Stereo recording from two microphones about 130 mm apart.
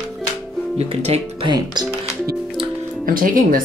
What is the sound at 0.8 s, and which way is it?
Speech, 55° right (ahead or behind).